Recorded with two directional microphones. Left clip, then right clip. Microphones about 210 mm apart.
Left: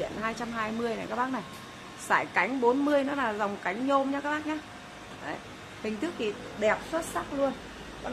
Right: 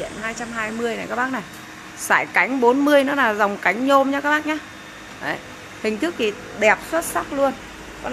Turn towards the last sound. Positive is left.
turn(degrees=-25)  # may be behind; listen again after turning